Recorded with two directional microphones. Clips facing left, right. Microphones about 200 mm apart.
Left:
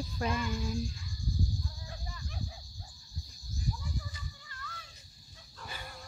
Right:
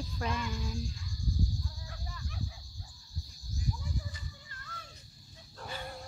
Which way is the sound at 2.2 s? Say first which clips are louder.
Right 1 dB; 30° left (ahead or behind).